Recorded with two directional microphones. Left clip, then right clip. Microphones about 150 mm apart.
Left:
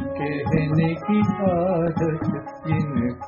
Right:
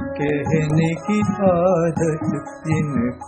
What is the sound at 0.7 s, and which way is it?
Music, 20° right (ahead or behind).